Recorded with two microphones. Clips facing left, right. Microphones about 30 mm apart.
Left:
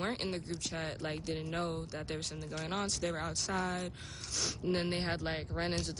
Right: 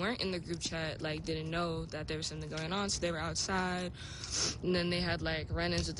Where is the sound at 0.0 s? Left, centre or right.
Centre.